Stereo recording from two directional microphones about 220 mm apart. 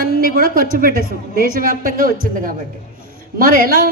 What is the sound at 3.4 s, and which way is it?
Speech, 40° right (ahead or behind).